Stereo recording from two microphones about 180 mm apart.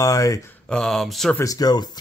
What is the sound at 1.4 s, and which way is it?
Speech, 20° left (ahead or behind).